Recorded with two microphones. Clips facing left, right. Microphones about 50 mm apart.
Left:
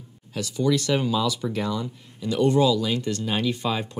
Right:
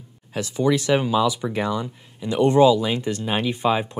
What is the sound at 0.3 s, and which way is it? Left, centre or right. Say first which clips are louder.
Speech: right 2 dB; right.